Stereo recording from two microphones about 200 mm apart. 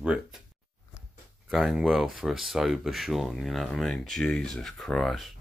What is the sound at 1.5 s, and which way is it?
Speech, centre (ahead or behind).